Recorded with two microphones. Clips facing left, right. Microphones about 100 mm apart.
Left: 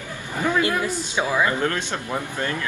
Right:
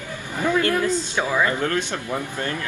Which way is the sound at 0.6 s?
15° left (ahead or behind).